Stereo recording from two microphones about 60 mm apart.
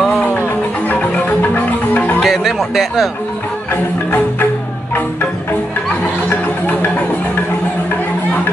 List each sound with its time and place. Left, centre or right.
1.4 s music: left
2.1 s music: centre
3.7 s music: left
6.2 s music: left